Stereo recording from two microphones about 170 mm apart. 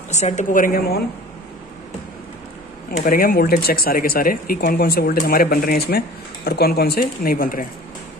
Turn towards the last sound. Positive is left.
turn(degrees=55)  # may be behind; listen again after turning